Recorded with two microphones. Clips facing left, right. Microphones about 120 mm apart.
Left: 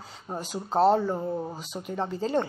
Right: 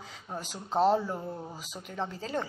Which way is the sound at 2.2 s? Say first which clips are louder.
Left 9 dB; centre (ahead or behind).